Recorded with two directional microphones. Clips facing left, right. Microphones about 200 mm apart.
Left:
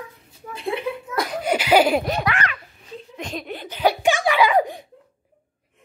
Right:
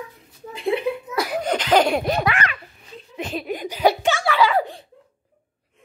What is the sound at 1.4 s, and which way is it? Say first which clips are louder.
Laughter: left 2 dB; 10° left (ahead or behind).